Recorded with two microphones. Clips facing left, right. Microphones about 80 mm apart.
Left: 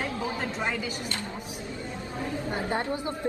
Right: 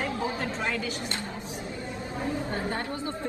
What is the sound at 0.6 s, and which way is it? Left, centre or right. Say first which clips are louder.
Speech: left 1 dB; centre.